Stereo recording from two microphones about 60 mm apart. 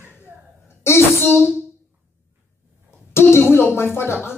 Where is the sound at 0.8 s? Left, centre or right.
Left.